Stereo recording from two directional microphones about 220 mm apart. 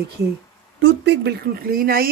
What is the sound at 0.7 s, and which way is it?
A woman's voice, 55° right (ahead or behind).